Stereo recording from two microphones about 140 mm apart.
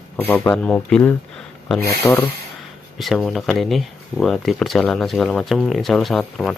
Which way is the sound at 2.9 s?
Centre (ahead or behind).